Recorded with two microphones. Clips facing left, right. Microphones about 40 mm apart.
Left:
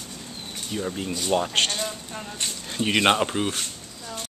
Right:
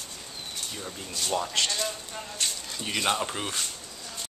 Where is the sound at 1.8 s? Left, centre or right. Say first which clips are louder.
Left 2 dB; centre.